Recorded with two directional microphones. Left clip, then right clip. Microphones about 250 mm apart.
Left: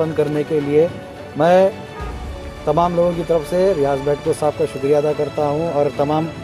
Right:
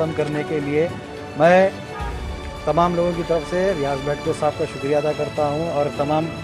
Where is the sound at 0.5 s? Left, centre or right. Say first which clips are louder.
Left 6 dB; left.